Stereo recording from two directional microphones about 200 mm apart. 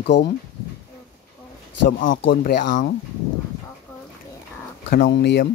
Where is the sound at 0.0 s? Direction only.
60° left (ahead or behind).